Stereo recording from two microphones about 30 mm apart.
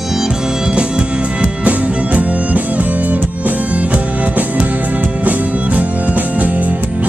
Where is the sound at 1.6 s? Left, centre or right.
Right.